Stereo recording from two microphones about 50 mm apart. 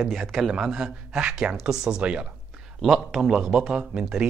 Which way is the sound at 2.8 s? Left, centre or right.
Centre.